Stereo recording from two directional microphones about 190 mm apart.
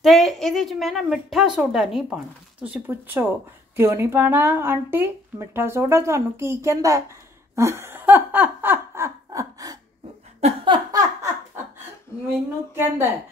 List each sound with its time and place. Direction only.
0.0 s a woman's voice: centre (ahead or behind); by 9.8 s 20° right (ahead or behind)
10.4 s laughter: 25° right (ahead or behind)
12.7 s speech: 10° right (ahead or behind)